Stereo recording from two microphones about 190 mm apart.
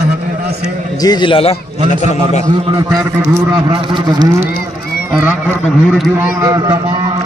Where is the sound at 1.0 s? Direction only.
25° left (ahead or behind).